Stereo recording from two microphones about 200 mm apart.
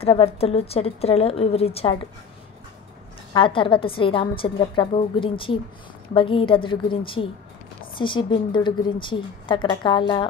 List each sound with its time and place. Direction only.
0.0 s a woman's voice: 30° left (ahead or behind)
3.3 s a woman's voice: 25° left (ahead or behind)